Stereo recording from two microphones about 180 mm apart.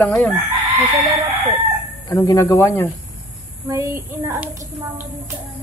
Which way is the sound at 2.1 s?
20° left (ahead or behind).